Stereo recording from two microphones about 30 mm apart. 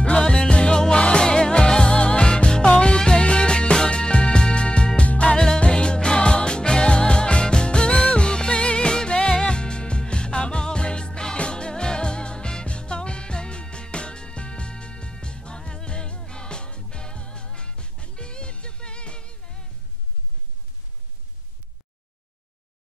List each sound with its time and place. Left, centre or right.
0.0 s music: left
3.0 s music: left
5.0 s music: left
5.3 s music: left